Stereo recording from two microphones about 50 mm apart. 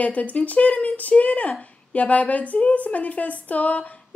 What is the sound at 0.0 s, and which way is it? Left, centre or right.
A woman's voice, left.